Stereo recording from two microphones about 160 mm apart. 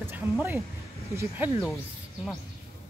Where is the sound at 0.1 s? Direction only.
15° right (ahead or behind).